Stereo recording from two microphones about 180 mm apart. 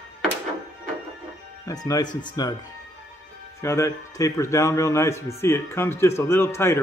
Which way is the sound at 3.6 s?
15° left (ahead or behind).